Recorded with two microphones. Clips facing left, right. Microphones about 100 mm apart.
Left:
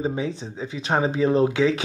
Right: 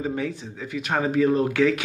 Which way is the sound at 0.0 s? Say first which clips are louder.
Left 1 dB; 20° left (ahead or behind).